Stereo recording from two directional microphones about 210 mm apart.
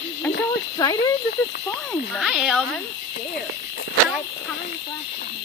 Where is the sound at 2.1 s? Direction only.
5° right (ahead or behind).